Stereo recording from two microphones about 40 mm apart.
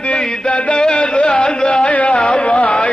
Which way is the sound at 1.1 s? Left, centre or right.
Left.